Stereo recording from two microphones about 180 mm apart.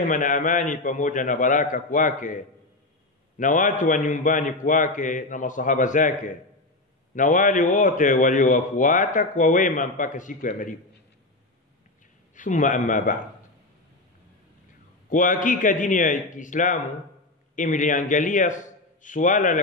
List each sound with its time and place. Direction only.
0.0 s a man's voice: 45° left (ahead or behind)
3.3 s a man's voice: 45° left (ahead or behind)
12.4 s a man's voice: 45° left (ahead or behind)
15.0 s a man's voice: 45° left (ahead or behind)